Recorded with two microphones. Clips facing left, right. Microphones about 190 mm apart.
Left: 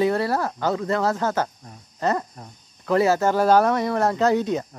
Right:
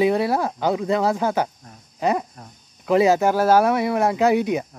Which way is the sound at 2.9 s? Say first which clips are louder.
Right 2 dB; 15° right (ahead or behind).